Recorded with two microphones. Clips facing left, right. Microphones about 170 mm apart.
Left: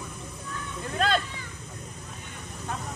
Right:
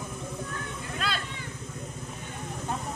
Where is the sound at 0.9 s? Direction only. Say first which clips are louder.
Left 8 dB; 45° left (ahead or behind).